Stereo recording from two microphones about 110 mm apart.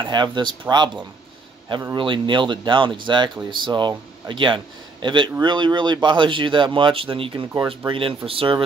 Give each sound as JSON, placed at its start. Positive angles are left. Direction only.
{"t": 0.0, "sound": "speech", "side_deg": -45}
{"t": 2.0, "sound": "speech", "side_deg": -45}